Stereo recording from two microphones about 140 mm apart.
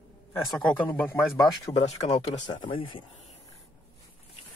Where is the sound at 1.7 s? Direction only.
50° left (ahead or behind).